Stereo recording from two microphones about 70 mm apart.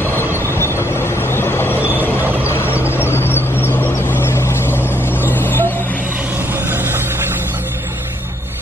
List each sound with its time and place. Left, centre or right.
0.6 s train: left
3.0 s vehicle: left